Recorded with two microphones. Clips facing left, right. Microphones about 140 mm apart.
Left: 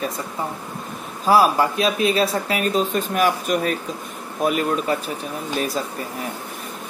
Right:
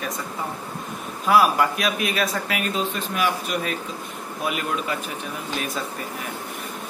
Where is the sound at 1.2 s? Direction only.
30° left (ahead or behind).